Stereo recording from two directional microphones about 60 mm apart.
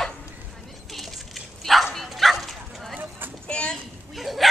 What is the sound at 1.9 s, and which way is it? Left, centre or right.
Bow-wow, centre.